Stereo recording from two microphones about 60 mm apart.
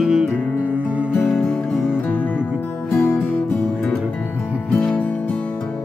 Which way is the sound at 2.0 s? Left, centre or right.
Left.